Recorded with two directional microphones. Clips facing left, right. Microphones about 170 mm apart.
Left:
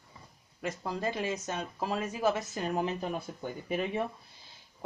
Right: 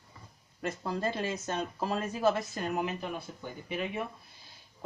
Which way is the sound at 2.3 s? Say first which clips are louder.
Even; 20° left (ahead or behind).